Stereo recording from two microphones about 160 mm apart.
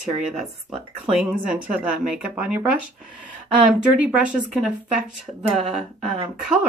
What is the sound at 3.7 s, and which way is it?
Speech, 5° right (ahead or behind).